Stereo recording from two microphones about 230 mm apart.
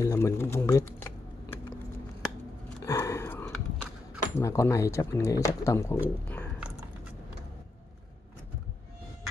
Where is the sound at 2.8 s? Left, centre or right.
Centre.